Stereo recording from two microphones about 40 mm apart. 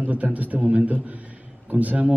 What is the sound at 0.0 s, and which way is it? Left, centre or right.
A man's voice, right.